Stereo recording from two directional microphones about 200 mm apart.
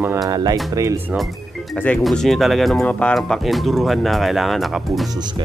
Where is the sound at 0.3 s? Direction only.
20° right (ahead or behind).